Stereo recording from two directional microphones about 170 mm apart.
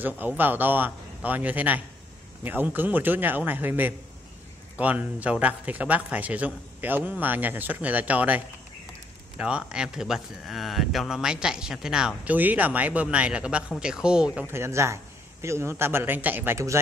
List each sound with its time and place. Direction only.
0.0 s a man's voice: 10° right (ahead or behind)
9.4 s speech: 5° right (ahead or behind)
14.5 s a man's voice: 15° right (ahead or behind)